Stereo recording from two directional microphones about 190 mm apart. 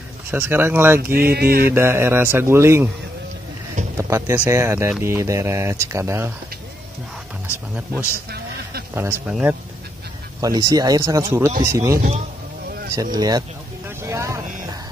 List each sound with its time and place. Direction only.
0.3 s speech: 10° right (ahead or behind)
1.1 s mantra: 55° right (ahead or behind)
1.7 s speech: 15° right (ahead or behind)
3.9 s speech: 15° right (ahead or behind)
7.4 s speech: 10° right (ahead or behind)
10.4 s speech: 20° right (ahead or behind)
12.9 s speech: 20° right (ahead or behind)
13.8 s vehicle: 15° right (ahead or behind)